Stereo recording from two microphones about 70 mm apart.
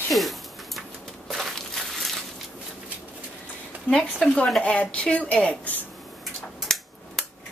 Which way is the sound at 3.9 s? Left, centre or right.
Centre.